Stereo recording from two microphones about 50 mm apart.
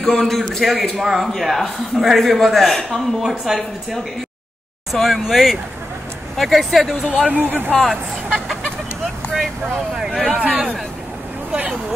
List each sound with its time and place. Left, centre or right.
0.0 s a man's voice: centre
7.1 s speech: right
7.3 s speech: right
7.8 s chicken: centre
10.1 s speech: centre